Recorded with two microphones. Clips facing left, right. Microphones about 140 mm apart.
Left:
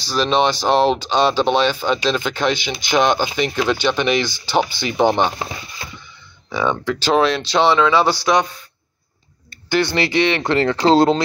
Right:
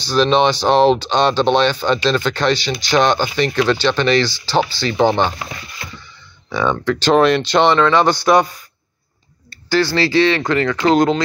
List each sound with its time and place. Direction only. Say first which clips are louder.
0.0 s speech: right 3 dB; 5° left (ahead or behind)
6.5 s speech: right 2 dB; 10° left (ahead or behind)
9.7 s speech: right 2 dB; 20° left (ahead or behind)